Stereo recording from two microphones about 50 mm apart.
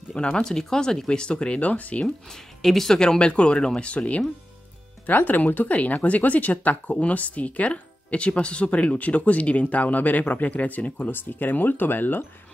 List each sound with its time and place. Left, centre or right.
0.1 s speech: centre
1.6 s speech: left
2.0 s speech: centre
5.0 s speech: left
11.1 s speech: left